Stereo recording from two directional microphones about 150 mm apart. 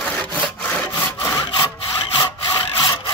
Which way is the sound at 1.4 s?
35° left (ahead or behind).